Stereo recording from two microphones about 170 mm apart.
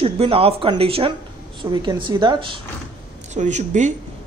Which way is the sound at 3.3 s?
45° right (ahead or behind).